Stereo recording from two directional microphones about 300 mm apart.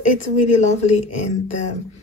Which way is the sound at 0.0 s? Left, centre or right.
Left.